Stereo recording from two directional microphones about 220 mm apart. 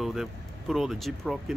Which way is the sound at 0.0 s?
Centre (ahead or behind).